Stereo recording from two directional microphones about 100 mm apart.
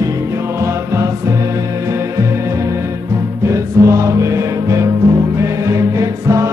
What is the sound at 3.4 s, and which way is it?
Music, 30° right (ahead or behind).